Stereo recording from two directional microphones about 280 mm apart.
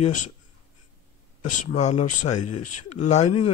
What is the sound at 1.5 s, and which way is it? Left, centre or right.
Speech, left.